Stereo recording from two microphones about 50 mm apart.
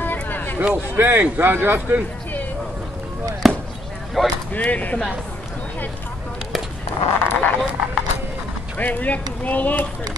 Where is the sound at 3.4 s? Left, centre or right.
Centre.